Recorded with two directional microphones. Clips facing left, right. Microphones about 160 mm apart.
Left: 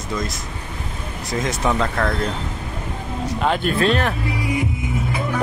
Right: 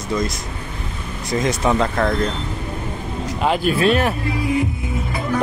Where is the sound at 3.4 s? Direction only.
5° right (ahead or behind).